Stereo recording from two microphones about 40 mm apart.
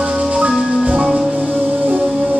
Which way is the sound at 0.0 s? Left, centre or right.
Right.